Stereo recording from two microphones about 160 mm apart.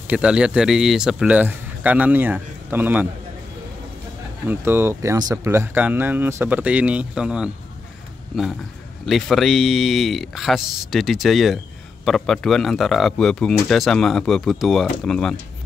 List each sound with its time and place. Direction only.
0.1 s speech: 5° right (ahead or behind)
4.5 s speech: 15° right (ahead or behind)
9.0 s speech: centre (ahead or behind)